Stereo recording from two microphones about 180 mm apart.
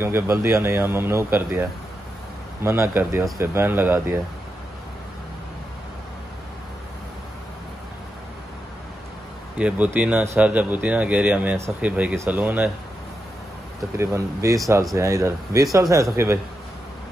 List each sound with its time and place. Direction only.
0.0 s speech: 15° right (ahead or behind)
9.6 s speech: 5° right (ahead or behind)
13.9 s speech: 15° right (ahead or behind)